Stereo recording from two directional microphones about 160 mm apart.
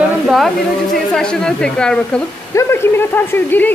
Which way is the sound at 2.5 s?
20° left (ahead or behind).